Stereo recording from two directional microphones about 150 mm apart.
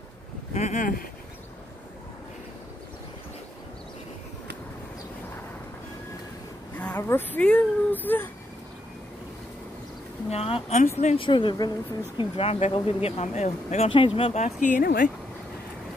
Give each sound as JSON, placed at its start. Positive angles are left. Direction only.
{"t": 0.6, "sound": "speech", "side_deg": 55}
{"t": 6.8, "sound": "speech", "side_deg": 15}
{"t": 10.3, "sound": "speech", "side_deg": 45}
{"t": 11.1, "sound": "a woman's voice", "side_deg": 35}
{"t": 12.2, "sound": "speech", "side_deg": 40}